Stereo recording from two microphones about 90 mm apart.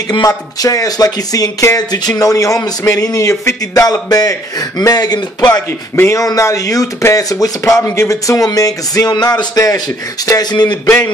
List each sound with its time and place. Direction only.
0.3 s speech: 40° left (ahead or behind)
5.9 s speech: 35° left (ahead or behind)
10.5 s speech: 55° left (ahead or behind)